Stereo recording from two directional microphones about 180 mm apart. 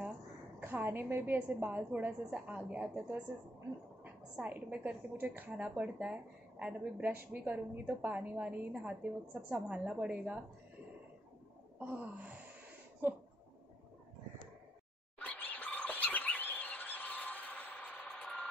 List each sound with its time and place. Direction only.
0.6 s a woman's voice: 10° right (ahead or behind)
11.8 s a woman's voice: 10° right (ahead or behind)
15.1 s a sound: 10° left (ahead or behind)